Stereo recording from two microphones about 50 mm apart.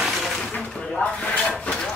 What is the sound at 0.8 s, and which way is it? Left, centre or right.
Speech, left.